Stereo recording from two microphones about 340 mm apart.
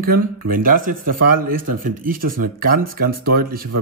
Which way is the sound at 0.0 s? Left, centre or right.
Right.